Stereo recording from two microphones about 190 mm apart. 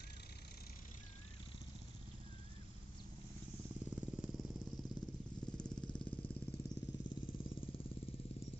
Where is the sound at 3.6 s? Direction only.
5° right (ahead or behind).